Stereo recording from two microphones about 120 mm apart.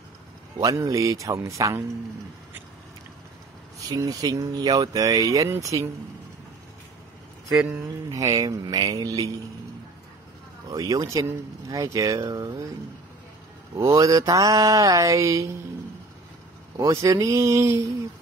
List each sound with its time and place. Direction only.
0.6 s mantra: 25° right (ahead or behind)
3.9 s speech: 30° right (ahead or behind)
5.5 s mantra: 25° right (ahead or behind)
8.1 s speech: 30° right (ahead or behind)
10.7 s speech: 30° right (ahead or behind)
11.7 s mantra: 25° right (ahead or behind)
13.7 s mantra: 25° right (ahead or behind)
16.7 s mantra: 25° right (ahead or behind)